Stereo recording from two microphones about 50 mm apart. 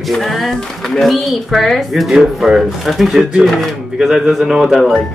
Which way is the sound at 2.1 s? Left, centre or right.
Centre.